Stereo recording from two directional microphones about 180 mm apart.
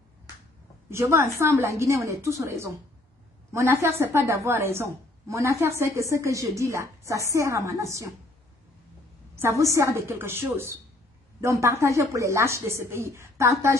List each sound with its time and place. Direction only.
0.8 s a woman's voice: 15° right (ahead or behind)
9.3 s a woman's voice: 15° right (ahead or behind)